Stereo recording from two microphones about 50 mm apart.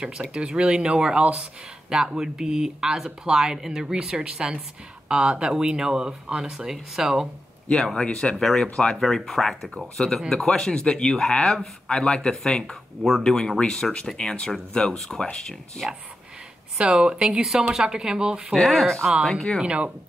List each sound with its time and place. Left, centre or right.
0.3 s speech: centre
7.7 s speech: centre
15.8 s speech: centre
16.7 s speech: centre
18.5 s speech: centre
19.6 s speech: right